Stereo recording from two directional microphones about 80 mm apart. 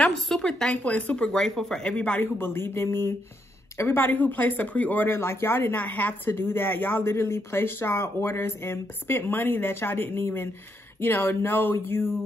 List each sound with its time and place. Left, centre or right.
0.0 s speech: centre; by 12.1 s left